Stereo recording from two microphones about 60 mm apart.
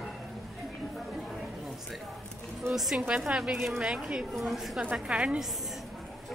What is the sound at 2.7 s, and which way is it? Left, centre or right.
A woman's voice, centre.